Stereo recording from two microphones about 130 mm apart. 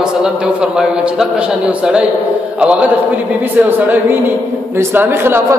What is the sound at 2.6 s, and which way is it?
Speech, 10° right (ahead or behind).